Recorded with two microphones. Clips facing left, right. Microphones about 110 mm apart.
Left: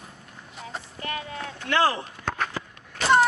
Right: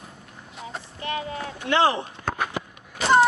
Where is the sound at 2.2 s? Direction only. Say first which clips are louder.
Right 2 dB; 10° right (ahead or behind).